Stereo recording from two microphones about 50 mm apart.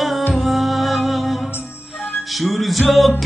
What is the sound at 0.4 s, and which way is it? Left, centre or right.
Music, centre.